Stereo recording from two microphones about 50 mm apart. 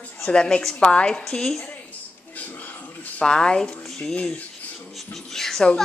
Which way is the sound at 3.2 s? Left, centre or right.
Centre.